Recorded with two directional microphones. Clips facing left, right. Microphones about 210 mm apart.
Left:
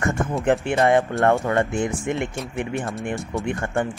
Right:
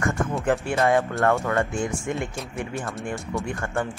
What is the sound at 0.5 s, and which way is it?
Speech, 20° left (ahead or behind).